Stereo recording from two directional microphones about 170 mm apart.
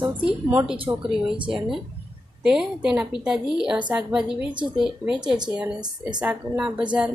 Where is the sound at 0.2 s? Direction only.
10° right (ahead or behind).